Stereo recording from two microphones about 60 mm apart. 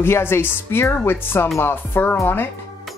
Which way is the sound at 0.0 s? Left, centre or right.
Left.